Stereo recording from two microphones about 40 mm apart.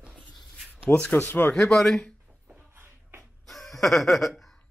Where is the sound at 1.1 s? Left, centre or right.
Left.